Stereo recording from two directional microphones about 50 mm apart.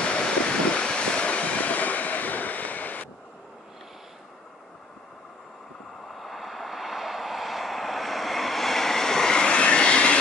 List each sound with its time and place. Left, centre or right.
0.0 s vehicle: left
6.0 s vehicle: centre; by 10.1 s left